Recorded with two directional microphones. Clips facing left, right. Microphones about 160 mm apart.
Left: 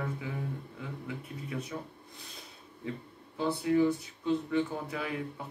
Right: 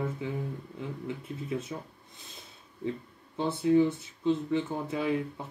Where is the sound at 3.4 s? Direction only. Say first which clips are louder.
Right 3 dB; 25° right (ahead or behind).